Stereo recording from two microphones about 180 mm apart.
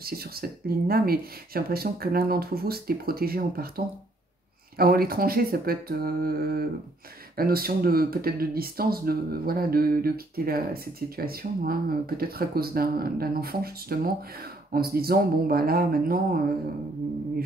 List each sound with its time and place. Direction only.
0.0 s speech: 60° right (ahead or behind)